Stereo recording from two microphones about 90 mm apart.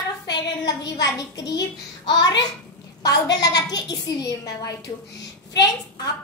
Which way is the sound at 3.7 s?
45° left (ahead or behind).